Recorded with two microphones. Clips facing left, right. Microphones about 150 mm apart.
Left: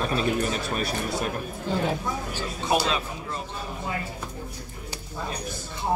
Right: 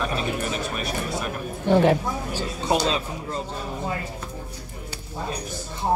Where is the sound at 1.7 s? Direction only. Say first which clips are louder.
Right 9 dB; 70° right (ahead or behind).